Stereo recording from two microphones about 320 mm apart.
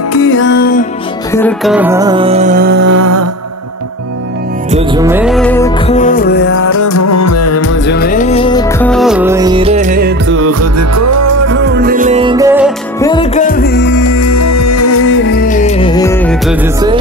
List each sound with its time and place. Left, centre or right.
0.1 s music: left
1.3 s music: centre; by 3.3 s right
4.6 s music: centre
5.9 s music: left
6.6 s music: left; by 11.3 s right
11.4 s music: right; by 12.7 s centre
13.0 s music: centre; by 13.9 s left
13.9 s music: left; by 16.5 s centre